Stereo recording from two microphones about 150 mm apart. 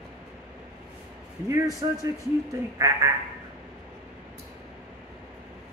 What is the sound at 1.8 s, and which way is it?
Speech, 30° right (ahead or behind).